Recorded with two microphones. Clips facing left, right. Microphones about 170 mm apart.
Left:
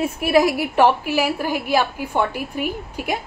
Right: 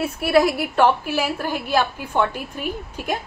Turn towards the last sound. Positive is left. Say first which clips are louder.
# left 1 dB
turn(degrees=10)  # may be behind; listen again after turning